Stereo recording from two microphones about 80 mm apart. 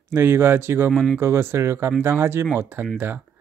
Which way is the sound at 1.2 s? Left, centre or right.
Right.